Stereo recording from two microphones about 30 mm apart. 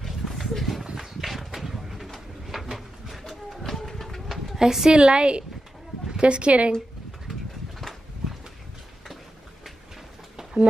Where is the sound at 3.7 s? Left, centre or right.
Centre.